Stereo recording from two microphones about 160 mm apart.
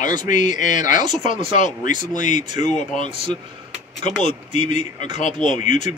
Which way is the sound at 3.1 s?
35° right (ahead or behind).